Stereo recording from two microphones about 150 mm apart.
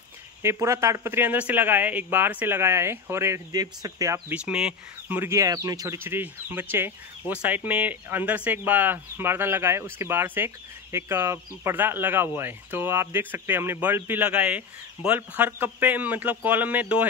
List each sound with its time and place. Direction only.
0.4 s speech: 20° right (ahead or behind)
4.3 s speech: 5° right (ahead or behind)